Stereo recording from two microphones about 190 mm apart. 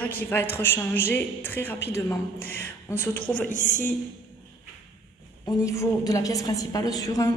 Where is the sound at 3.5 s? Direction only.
40° left (ahead or behind).